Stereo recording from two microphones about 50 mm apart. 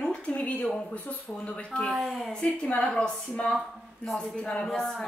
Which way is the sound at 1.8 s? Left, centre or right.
Centre.